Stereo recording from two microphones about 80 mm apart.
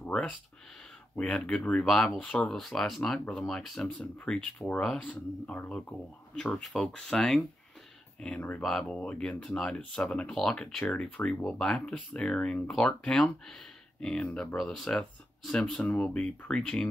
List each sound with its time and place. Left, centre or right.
0.0 s a sound: centre
1.1 s speech: centre
8.4 s speech: left
8.6 s speech: centre